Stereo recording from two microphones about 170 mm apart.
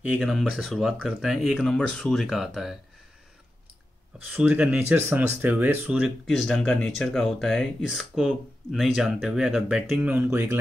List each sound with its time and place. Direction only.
0.1 s speech: centre (ahead or behind)
4.3 s speech: 5° right (ahead or behind)